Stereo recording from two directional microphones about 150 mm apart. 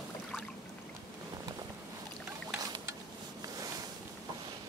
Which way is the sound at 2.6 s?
25° right (ahead or behind).